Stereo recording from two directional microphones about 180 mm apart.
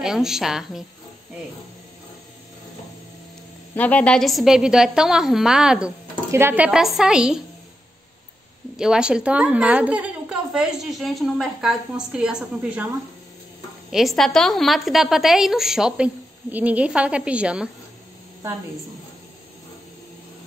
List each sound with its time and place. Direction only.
0.0 s a woman's voice: centre (ahead or behind)
3.7 s a woman's voice: 10° left (ahead or behind)
8.7 s a woman's voice: 5° right (ahead or behind)